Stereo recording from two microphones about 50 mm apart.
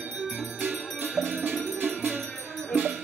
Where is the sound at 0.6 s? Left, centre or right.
Right.